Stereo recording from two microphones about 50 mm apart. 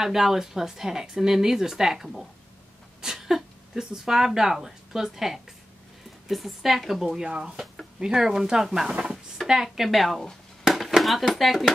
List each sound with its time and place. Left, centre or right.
0.0 s a woman's voice: centre
7.2 s speech: centre
7.5 s speech: centre
8.0 s a woman's voice: centre
10.6 s chop: centre
11.0 s a woman's voice: centre